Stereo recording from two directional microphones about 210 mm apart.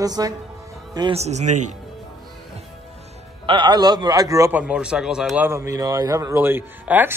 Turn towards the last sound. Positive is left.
turn(degrees=-10)  # may be behind; listen again after turning